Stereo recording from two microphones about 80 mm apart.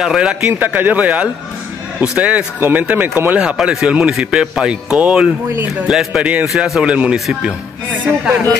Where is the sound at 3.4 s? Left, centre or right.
Centre.